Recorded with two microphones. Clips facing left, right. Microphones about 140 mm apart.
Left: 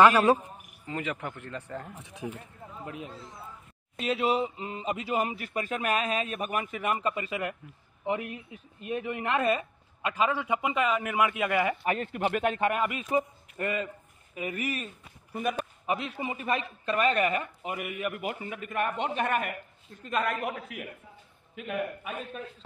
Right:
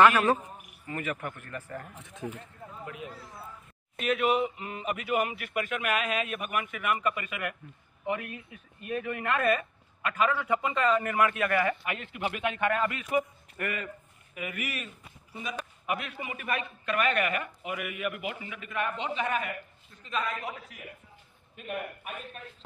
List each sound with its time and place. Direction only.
0.8 s speech: 15° left (ahead or behind)
2.9 s speech: 30° left (ahead or behind)
11.8 s speech: 40° left (ahead or behind)
12.6 s a man's voice: 20° left (ahead or behind)
15.9 s speech: 25° left (ahead or behind); by 20.8 s 60° left (ahead or behind)